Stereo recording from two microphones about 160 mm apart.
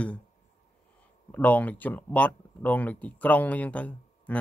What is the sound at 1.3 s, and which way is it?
Speech, 10° left (ahead or behind).